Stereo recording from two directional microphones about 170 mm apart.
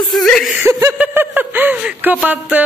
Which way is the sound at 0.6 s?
15° right (ahead or behind).